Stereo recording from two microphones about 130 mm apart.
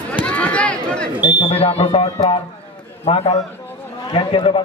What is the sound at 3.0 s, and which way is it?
A man's voice, 50° left (ahead or behind).